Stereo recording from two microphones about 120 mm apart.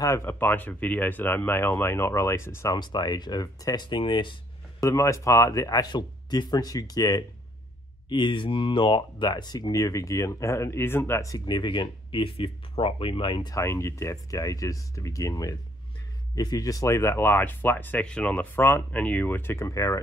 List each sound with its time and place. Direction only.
0.0 s speech: 20° left (ahead or behind)
2.8 s speech: 35° left (ahead or behind)
4.7 s speech: 25° left (ahead or behind); by 13.5 s 45° left (ahead or behind)
13.5 s speech: 25° left (ahead or behind)